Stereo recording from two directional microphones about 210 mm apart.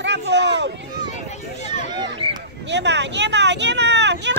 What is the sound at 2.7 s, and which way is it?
Speech, 55° right (ahead or behind).